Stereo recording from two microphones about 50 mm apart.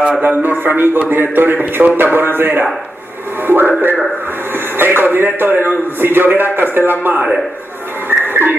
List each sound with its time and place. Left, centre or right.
0.2 s a man's voice: right
8.1 s music: right